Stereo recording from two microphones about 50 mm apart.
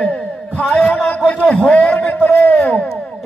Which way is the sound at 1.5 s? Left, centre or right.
Centre.